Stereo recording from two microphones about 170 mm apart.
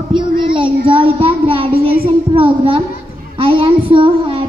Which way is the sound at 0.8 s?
30° right (ahead or behind).